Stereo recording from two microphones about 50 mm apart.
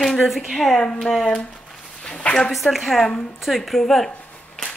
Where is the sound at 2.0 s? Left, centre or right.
Left.